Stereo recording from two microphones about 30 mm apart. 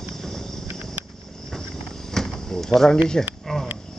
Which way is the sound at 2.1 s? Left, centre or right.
Centre.